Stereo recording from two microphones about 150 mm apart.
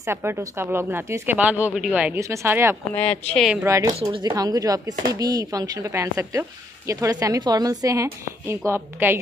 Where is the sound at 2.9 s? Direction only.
10° left (ahead or behind).